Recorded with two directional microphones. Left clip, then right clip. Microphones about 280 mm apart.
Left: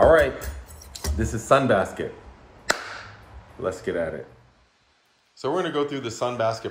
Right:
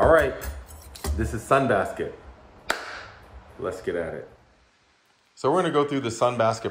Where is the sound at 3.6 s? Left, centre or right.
Centre.